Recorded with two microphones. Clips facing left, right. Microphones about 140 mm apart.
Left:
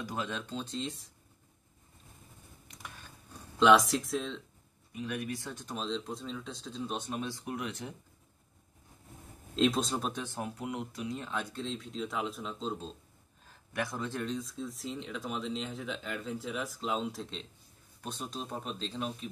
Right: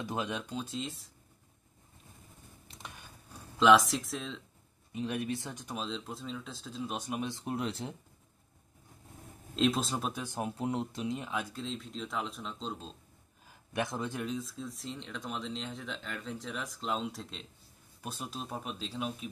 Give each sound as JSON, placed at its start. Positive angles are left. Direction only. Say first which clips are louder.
{"t": 0.0, "sound": "speech", "louder": "right 1 dB", "side_deg": -20}
{"t": 2.7, "sound": "a sound", "louder": "right 1 dB", "side_deg": -30}
{"t": 3.5, "sound": "speech", "louder": "even", "side_deg": 0}
{"t": 4.9, "sound": "speech", "louder": "right 2 dB", "side_deg": -30}
{"t": 9.6, "sound": "speech", "louder": "left 1 dB", "side_deg": 0}
{"t": 10.5, "sound": "speech", "louder": "right 4 dB", "side_deg": -30}
{"t": 11.2, "sound": "speech", "louder": "even", "side_deg": -5}
{"t": 13.7, "sound": "speech", "louder": "right 1 dB", "side_deg": -20}
{"t": 14.2, "sound": "speech", "louder": "left 1 dB", "side_deg": 0}